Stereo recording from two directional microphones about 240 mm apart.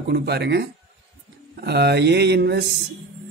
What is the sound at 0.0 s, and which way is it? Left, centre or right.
Speech, right.